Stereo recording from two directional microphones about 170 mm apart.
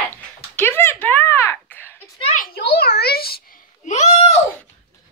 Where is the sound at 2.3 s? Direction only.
60° left (ahead or behind).